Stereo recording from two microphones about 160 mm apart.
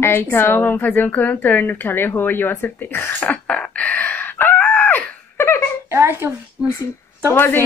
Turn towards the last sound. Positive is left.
turn(degrees=15)  # may be behind; listen again after turning